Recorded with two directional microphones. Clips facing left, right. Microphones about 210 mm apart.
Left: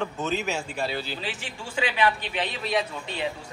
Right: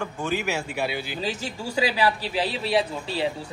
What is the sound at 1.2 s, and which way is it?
A man's voice, 40° right (ahead or behind).